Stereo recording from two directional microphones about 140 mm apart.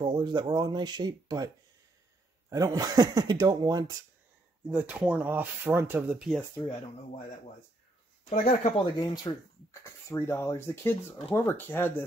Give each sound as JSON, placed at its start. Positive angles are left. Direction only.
{"t": 0.0, "sound": "speech", "side_deg": -35}
{"t": 2.5, "sound": "speech", "side_deg": -25}
{"t": 4.6, "sound": "speech", "side_deg": -10}
{"t": 8.3, "sound": "speech", "side_deg": 65}
{"t": 8.9, "sound": "speech", "side_deg": 30}
{"t": 10.0, "sound": "speech", "side_deg": 20}